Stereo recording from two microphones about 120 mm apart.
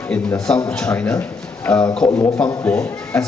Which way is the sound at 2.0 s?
30° left (ahead or behind).